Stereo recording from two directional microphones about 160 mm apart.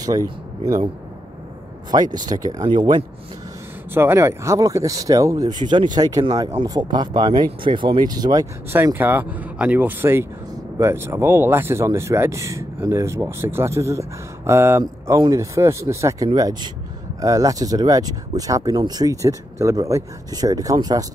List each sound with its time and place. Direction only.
1.9 s speech: 25° right (ahead or behind)
3.9 s speech: 15° right (ahead or behind)
8.7 s speech: 15° right (ahead or behind)